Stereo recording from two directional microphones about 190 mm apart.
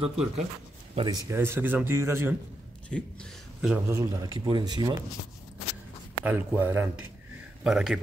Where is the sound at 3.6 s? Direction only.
10° right (ahead or behind).